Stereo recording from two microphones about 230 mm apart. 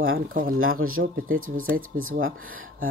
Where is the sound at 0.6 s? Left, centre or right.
Right.